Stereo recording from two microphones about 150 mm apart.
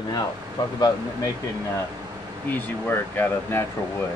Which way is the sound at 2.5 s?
15° left (ahead or behind).